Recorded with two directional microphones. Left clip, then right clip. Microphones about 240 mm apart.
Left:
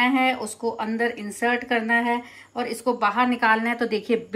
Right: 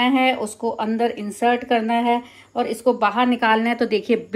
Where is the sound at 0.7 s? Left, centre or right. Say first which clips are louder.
Right 5 dB; right.